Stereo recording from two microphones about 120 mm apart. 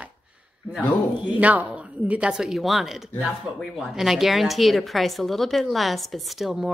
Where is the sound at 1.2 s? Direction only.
10° right (ahead or behind).